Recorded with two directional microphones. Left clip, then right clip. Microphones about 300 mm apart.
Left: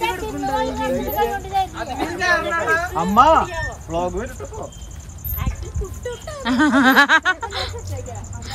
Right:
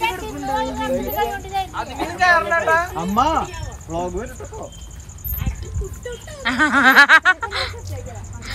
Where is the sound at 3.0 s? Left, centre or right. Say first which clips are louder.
Left 5 dB; centre.